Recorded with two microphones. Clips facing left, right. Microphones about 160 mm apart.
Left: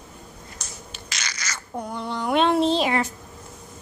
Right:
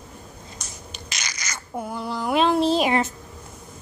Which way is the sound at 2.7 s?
20° right (ahead or behind).